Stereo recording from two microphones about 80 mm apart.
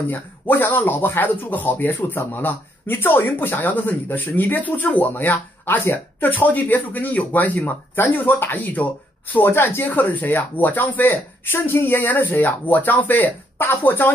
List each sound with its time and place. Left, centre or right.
0.1 s speech: left